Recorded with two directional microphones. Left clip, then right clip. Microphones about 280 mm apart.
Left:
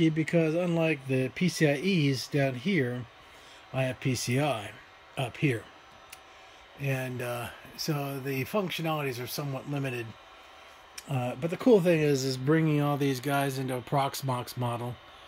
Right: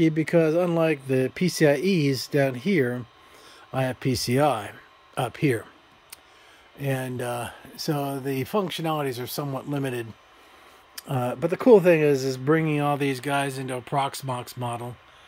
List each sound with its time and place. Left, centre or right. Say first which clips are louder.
0.0 s speech: right 6 dB; centre
6.8 s speech: right 4 dB; right; by 14.9 s centre